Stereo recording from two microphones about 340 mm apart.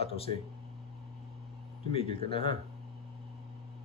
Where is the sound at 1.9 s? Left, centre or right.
Centre.